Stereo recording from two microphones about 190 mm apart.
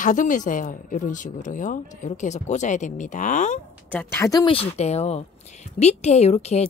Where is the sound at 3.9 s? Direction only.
10° left (ahead or behind).